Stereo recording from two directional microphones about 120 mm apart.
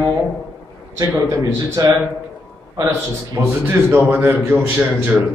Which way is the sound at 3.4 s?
15° right (ahead or behind).